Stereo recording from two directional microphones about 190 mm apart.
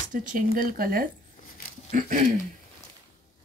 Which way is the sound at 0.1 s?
45° right (ahead or behind).